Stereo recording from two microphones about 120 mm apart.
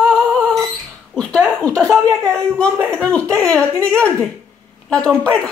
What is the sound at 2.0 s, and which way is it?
Speech, 25° right (ahead or behind).